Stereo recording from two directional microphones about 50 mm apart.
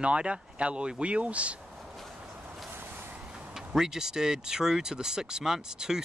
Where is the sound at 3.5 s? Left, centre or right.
Centre.